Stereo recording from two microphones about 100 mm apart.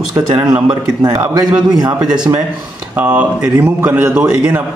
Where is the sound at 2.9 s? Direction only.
20° right (ahead or behind).